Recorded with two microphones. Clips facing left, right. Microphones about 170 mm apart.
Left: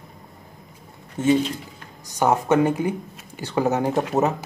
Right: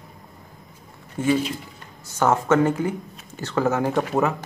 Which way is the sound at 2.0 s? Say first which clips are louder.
Even; 15° left (ahead or behind).